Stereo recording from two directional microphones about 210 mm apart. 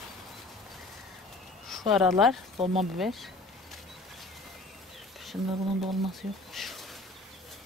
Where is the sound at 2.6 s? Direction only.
30° right (ahead or behind).